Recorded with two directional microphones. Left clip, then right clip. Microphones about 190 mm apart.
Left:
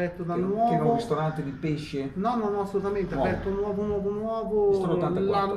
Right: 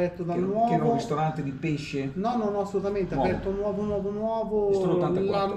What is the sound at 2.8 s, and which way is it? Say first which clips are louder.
Speech: even; 20° right (ahead or behind).